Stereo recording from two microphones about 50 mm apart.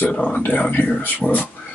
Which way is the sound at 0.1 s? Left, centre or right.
Left.